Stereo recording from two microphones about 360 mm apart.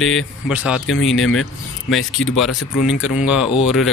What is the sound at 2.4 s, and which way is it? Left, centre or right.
Speech, centre.